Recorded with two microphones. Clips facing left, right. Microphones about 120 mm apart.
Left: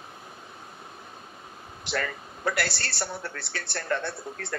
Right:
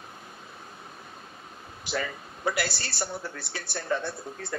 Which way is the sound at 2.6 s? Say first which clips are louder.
Left 1 dB; 65° left (ahead or behind).